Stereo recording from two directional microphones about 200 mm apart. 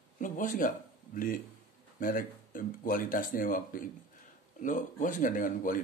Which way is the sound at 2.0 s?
45° left (ahead or behind).